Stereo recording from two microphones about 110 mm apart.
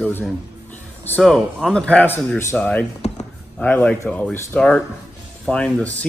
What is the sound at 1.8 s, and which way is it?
Speech, 15° left (ahead or behind).